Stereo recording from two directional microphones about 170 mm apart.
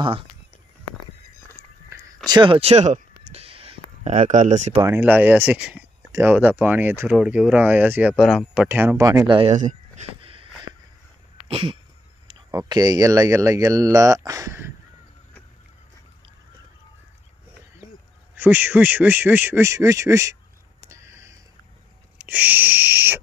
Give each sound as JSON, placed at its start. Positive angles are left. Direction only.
{"t": 1.9, "sound": "a sound", "side_deg": -15}
{"t": 2.2, "sound": "a sound", "side_deg": -25}
{"t": 4.1, "sound": "speech", "side_deg": -50}
{"t": 4.8, "sound": "speech", "side_deg": -10}
{"t": 8.6, "sound": "speech", "side_deg": -10}
{"t": 9.3, "sound": "speech", "side_deg": -35}
{"t": 9.6, "sound": "speech", "side_deg": -45}
{"t": 10.2, "sound": "a sound", "side_deg": -35}
{"t": 12.4, "sound": "speech", "side_deg": -20}
{"t": 18.3, "sound": "speech", "side_deg": -10}
{"t": 20.8, "sound": "a sound", "side_deg": -15}
{"t": 22.2, "sound": "speech", "side_deg": -10}